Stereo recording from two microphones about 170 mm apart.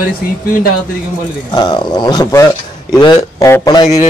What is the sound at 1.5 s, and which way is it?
A man's voice, 25° left (ahead or behind).